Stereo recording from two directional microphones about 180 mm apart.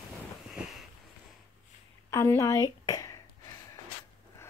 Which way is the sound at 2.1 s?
15° left (ahead or behind).